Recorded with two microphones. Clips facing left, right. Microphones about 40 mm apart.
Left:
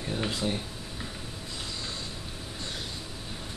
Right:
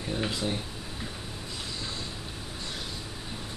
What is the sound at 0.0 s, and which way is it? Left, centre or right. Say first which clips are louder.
Speech: even; centre.